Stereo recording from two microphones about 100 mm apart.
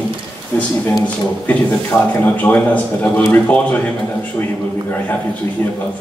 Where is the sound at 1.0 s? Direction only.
15° left (ahead or behind).